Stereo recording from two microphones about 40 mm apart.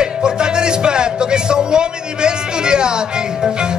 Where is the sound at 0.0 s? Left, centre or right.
Right.